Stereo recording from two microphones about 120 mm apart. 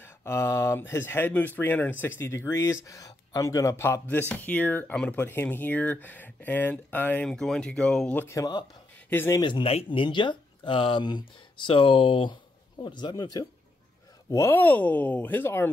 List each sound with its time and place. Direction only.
0.0 s speech: 20° left (ahead or behind)
7.2 s speech: 5° left (ahead or behind)
8.2 s speech: 25° left (ahead or behind)
9.4 s speech: 45° left (ahead or behind)
14.3 s speech: 20° left (ahead or behind)